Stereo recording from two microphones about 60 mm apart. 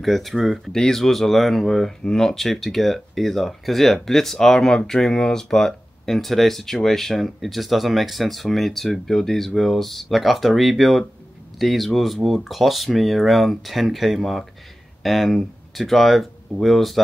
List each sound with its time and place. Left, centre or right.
0.0 s speech: centre